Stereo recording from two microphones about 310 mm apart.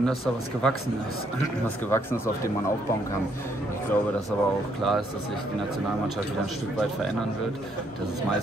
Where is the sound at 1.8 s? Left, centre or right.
Centre.